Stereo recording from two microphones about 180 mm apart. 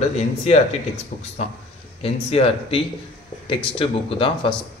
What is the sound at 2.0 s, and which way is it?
A man's voice, 35° left (ahead or behind).